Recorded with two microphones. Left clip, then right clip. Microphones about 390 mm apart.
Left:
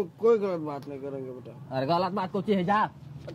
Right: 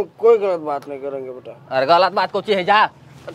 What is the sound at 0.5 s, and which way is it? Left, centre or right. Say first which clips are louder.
Speech: right 11 dB; centre.